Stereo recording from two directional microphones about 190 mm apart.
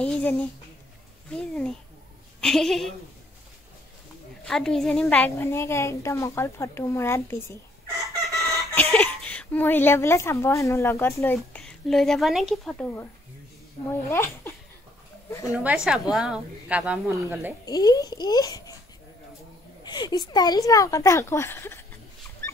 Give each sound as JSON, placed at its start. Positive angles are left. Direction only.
{"t": 0.0, "sound": "a sound", "side_deg": 10}
{"t": 1.3, "sound": "speech", "side_deg": 5}
{"t": 4.5, "sound": "a woman's voice", "side_deg": 5}
{"t": 8.1, "sound": "chicken", "side_deg": -15}
{"t": 8.7, "sound": "a woman's voice", "side_deg": 10}
{"t": 11.3, "sound": "speech", "side_deg": 5}
{"t": 14.1, "sound": "a woman's voice", "side_deg": 10}
{"t": 15.5, "sound": "a woman's voice", "side_deg": -5}
{"t": 17.6, "sound": "a child's voice", "side_deg": 20}
{"t": 19.8, "sound": "a woman's voice", "side_deg": 20}